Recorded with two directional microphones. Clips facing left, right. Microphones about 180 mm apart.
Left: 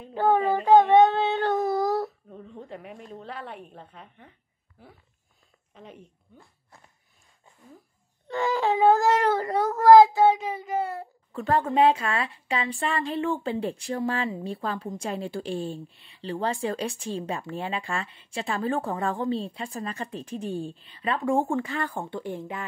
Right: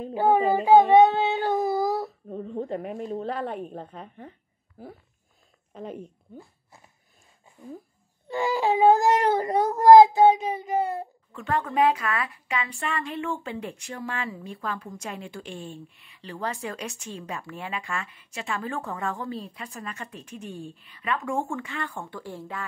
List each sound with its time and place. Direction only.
0.1 s speech: 10° right (ahead or behind)
0.6 s child singing: 10° right (ahead or behind)
2.2 s a woman's voice: 40° right (ahead or behind)
5.8 s a woman's voice: 40° right (ahead or behind)
8.3 s speech: 10° right (ahead or behind)
11.3 s a woman's voice: 35° left (ahead or behind)